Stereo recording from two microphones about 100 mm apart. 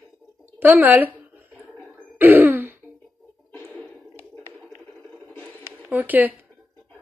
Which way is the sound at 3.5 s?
20° left (ahead or behind).